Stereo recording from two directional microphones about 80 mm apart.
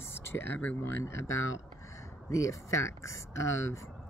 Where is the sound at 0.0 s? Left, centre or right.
Left.